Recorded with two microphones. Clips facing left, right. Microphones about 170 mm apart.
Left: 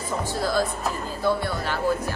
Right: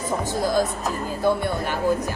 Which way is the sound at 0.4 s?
15° right (ahead or behind).